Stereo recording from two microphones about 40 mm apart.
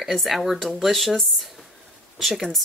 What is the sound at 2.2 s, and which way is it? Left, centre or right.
Speech, centre.